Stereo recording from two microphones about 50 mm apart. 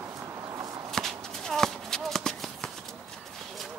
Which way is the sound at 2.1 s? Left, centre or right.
Centre.